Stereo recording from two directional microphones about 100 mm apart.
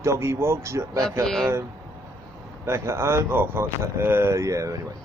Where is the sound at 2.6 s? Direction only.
25° right (ahead or behind).